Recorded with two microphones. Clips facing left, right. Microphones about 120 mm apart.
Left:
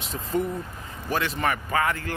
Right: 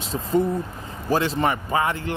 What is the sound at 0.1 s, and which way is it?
Speech, 30° right (ahead or behind).